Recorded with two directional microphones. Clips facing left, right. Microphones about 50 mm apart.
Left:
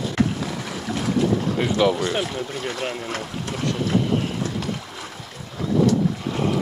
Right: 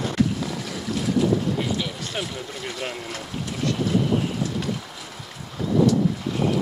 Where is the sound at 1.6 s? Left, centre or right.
Left.